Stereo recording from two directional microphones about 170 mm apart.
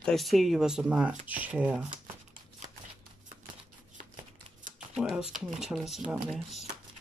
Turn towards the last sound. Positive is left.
turn(degrees=0)  # may be behind; listen again after turning